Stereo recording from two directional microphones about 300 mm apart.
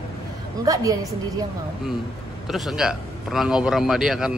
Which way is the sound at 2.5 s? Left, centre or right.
Centre.